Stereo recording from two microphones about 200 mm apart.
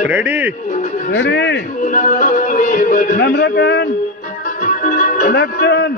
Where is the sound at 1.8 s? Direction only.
40° left (ahead or behind); by 3.8 s 60° left (ahead or behind).